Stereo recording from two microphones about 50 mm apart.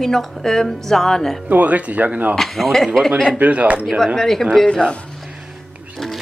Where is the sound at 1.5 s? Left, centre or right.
Right.